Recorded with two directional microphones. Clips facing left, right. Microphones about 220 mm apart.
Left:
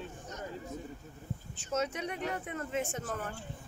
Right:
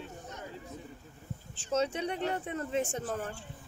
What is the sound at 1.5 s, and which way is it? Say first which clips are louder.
Speech: right 3 dB; 30° right (ahead or behind).